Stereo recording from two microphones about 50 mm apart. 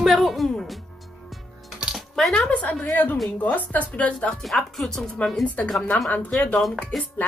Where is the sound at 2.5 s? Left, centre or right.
Left.